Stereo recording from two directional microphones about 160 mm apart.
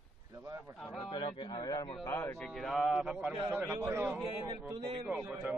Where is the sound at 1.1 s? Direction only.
30° left (ahead or behind).